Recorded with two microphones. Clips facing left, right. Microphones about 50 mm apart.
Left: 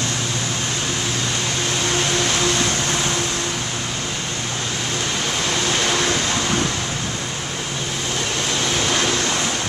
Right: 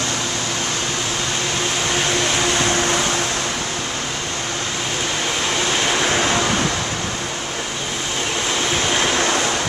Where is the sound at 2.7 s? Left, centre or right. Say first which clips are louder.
Right 3 dB; right.